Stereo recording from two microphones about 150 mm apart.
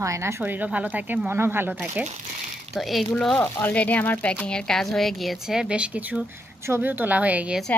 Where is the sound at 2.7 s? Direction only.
Centre (ahead or behind).